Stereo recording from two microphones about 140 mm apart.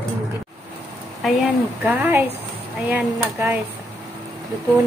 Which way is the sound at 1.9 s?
15° right (ahead or behind).